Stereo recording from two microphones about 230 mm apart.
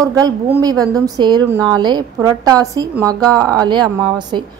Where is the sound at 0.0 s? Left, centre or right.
Centre.